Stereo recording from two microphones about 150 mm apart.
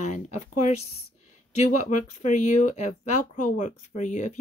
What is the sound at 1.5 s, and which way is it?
Speech, 50° left (ahead or behind).